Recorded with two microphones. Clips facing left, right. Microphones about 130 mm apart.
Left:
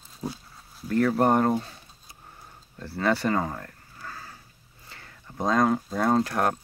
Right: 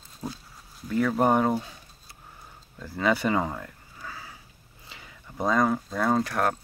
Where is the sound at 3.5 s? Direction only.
5° right (ahead or behind).